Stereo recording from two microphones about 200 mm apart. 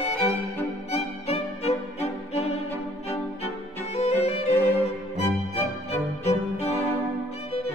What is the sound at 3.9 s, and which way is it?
Music, 30° left (ahead or behind).